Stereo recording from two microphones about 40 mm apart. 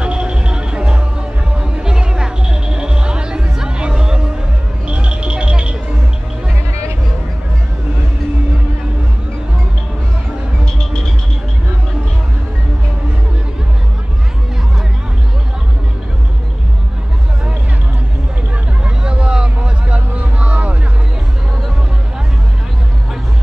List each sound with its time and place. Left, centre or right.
0.0 s music: right
19.0 s music: right